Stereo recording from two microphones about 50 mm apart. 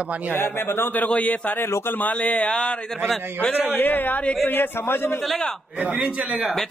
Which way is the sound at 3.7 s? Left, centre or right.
Left.